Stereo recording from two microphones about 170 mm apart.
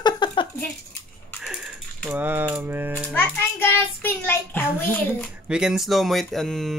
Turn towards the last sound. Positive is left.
turn(degrees=0)  # may be behind; listen again after turning